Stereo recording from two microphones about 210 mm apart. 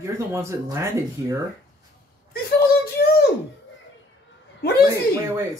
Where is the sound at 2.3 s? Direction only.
50° left (ahead or behind).